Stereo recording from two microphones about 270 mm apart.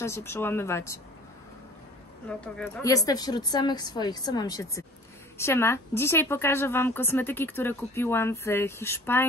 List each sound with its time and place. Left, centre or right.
0.0 s a woman's voice: centre
2.2 s a woman's voice: centre